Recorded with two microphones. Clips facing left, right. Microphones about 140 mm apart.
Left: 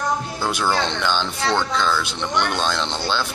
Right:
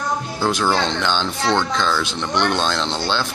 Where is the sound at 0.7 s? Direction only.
10° left (ahead or behind).